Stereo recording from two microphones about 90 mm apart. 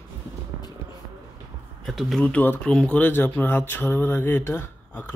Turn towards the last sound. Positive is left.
turn(degrees=25)  # may be behind; listen again after turning